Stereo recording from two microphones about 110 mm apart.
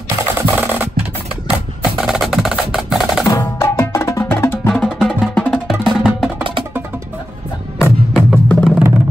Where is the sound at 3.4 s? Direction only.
25° left (ahead or behind).